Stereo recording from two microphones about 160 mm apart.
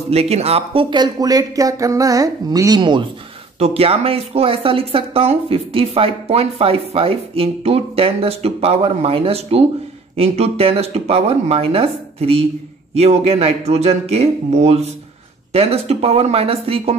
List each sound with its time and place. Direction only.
0.1 s speech: 40° right (ahead or behind)